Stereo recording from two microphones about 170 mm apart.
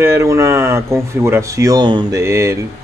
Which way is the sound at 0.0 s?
15° right (ahead or behind).